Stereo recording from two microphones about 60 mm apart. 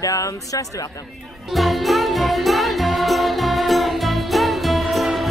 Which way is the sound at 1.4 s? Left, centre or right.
Centre.